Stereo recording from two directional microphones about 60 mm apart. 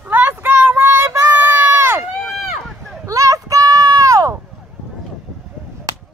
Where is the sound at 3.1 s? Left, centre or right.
Right.